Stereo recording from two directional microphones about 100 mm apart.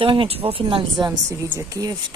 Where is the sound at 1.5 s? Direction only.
25° right (ahead or behind).